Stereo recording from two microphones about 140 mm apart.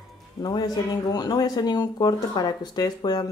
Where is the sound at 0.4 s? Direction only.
30° left (ahead or behind).